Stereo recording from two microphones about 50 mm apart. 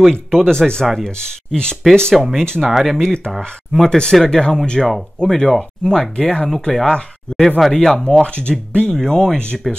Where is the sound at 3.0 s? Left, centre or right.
Centre.